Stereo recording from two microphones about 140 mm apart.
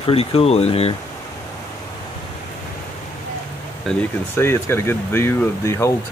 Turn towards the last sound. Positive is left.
turn(degrees=20)  # may be behind; listen again after turning